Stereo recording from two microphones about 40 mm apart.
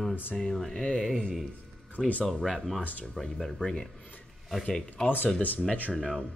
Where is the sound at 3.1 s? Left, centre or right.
Centre.